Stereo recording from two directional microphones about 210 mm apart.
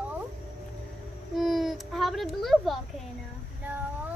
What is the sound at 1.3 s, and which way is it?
Speech, centre (ahead or behind).